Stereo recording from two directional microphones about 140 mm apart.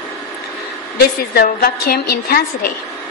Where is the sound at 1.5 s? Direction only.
90° left.